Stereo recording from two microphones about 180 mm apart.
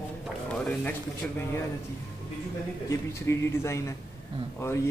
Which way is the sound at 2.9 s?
15° left (ahead or behind).